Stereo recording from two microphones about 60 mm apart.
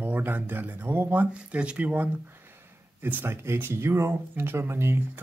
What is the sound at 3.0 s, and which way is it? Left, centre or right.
Speech, right.